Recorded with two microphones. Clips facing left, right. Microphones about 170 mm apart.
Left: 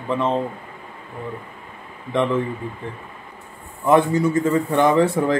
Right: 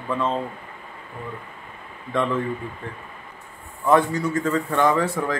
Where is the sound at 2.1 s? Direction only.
20° left (ahead or behind).